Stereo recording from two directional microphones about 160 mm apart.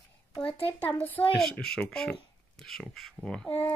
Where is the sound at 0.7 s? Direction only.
10° left (ahead or behind).